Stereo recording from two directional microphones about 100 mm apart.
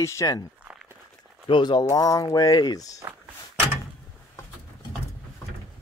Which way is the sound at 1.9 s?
35° left (ahead or behind).